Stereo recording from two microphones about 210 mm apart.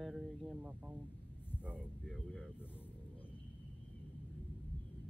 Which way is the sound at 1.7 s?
Centre (ahead or behind).